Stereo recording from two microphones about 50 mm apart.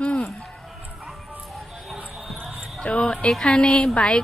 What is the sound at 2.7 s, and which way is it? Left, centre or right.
A woman's voice, centre.